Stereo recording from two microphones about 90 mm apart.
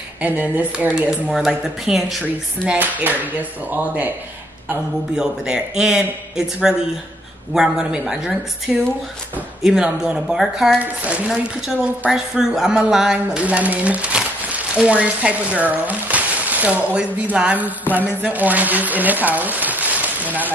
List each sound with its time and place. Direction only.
0.2 s speech: 20° right (ahead or behind)
0.9 s speech: 5° right (ahead or behind)
2.6 s speech: 15° right (ahead or behind)
5.1 s speech: 5° right (ahead or behind)
7.5 s speech: 5° right (ahead or behind)